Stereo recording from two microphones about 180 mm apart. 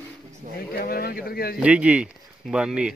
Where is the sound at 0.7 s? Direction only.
60° left (ahead or behind).